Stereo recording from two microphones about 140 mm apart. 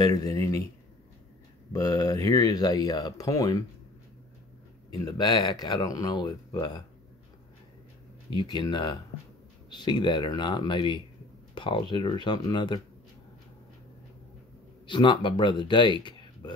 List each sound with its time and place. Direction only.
0.0 s speech: 25° left (ahead or behind)
1.7 s speech: 25° left (ahead or behind)
4.9 s speech: 30° left (ahead or behind)
8.3 s speech: 30° left (ahead or behind)
14.9 s speech: 35° left (ahead or behind)